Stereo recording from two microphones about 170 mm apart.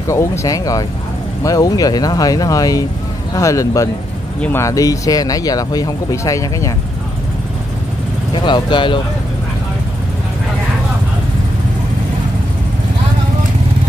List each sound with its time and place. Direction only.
0.1 s speech: 15° left (ahead or behind)
8.5 s speech: 25° left (ahead or behind)